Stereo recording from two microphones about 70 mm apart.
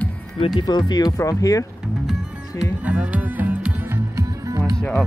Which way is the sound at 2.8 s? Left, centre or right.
Centre.